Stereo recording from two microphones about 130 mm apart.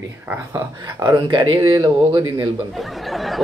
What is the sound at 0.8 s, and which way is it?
Speech, 35° right (ahead or behind).